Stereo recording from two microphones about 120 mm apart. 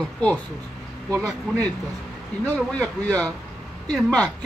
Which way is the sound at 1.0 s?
25° right (ahead or behind).